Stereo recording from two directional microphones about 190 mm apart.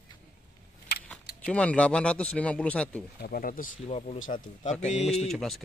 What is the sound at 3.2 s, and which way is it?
Speech, 50° left (ahead or behind).